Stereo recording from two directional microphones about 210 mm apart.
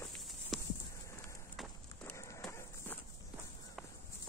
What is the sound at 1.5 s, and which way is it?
Run, 10° left (ahead or behind).